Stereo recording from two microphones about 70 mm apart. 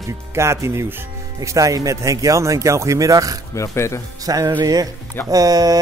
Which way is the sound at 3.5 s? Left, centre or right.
Left.